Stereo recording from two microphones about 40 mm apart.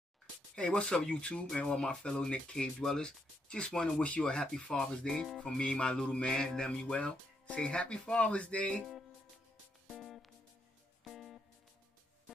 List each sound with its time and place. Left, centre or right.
0.6 s speech: left
9.9 s music: centre